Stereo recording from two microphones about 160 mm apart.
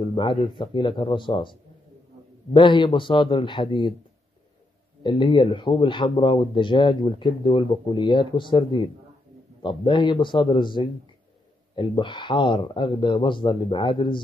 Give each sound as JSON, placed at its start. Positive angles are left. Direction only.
{"t": 0.1, "sound": "a man's voice", "side_deg": 30}
{"t": 5.0, "sound": "a man's voice", "side_deg": 30}